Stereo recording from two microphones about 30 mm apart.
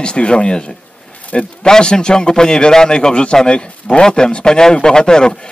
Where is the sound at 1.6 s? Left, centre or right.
Left.